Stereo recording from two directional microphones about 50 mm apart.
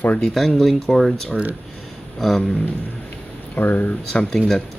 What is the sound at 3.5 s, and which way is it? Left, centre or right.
Speech, left.